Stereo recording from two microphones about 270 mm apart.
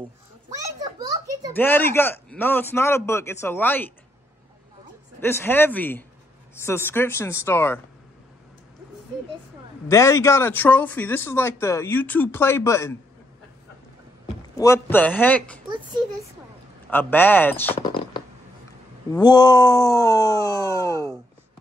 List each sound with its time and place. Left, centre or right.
0.7 s a sound: centre
1.5 s speech: centre
5.2 s speech: centre
9.8 s speech: centre
14.5 s speech: centre
15.7 s a child's voice: centre
16.9 s speech: centre
19.1 s speech: centre